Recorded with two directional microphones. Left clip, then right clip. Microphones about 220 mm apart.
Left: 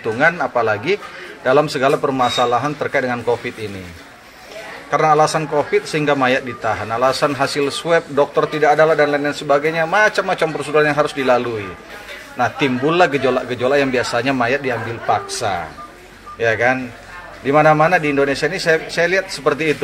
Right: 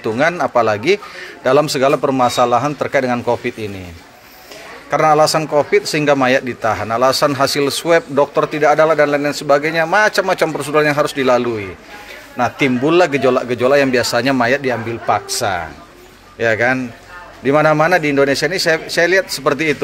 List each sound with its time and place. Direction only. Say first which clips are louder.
0.0 s a man's voice: even; 50° right (ahead or behind)
4.9 s a man's voice: right 2 dB; 50° right (ahead or behind)